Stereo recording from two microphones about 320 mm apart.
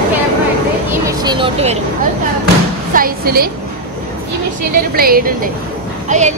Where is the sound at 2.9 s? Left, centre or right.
Right.